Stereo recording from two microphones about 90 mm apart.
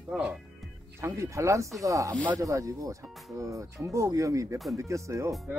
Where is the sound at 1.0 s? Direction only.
35° right (ahead or behind).